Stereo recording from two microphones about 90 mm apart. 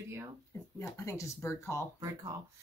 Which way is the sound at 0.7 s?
35° left (ahead or behind).